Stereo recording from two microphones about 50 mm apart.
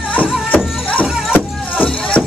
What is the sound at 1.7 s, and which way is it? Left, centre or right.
Music, left.